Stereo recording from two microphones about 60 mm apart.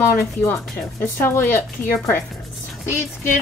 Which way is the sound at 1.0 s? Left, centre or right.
Left.